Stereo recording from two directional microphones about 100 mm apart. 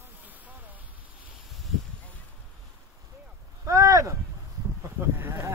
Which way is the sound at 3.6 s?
35° right (ahead or behind).